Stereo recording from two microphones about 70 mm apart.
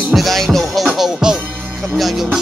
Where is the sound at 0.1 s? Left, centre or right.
Centre.